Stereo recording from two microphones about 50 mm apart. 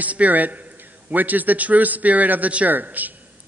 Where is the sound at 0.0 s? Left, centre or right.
Right.